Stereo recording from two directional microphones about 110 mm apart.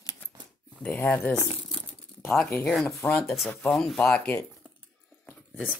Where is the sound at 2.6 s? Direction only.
Centre (ahead or behind).